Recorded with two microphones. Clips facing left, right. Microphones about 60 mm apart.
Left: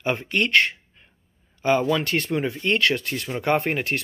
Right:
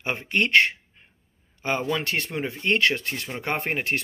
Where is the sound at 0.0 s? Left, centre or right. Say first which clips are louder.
Left 2 dB; right.